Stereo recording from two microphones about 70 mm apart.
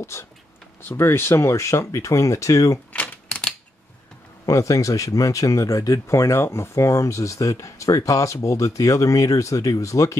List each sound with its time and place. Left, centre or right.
0.0 s speech: left
3.3 s typewriter: centre
4.5 s speech: left